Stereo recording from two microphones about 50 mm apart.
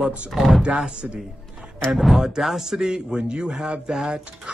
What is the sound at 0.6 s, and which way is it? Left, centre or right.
Speech, centre.